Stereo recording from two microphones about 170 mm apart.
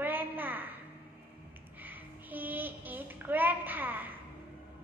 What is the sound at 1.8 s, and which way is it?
A child's voice, 10° right (ahead or behind).